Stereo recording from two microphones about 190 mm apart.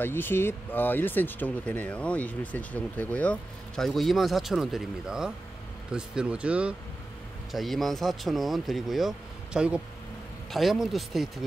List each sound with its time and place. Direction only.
0.0 s speech: 10° left (ahead or behind)